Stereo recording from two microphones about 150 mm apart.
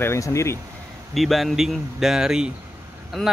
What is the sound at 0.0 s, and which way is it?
Speech, 20° left (ahead or behind).